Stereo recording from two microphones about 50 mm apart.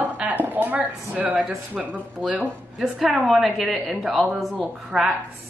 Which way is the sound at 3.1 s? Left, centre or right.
Right.